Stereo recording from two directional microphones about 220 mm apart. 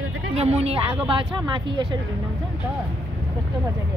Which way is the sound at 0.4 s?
30° right (ahead or behind).